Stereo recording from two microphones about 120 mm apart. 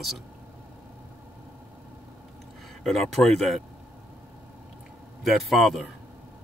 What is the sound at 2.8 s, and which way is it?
Speech, centre (ahead or behind).